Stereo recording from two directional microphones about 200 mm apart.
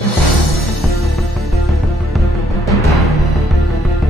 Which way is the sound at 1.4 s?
Centre (ahead or behind).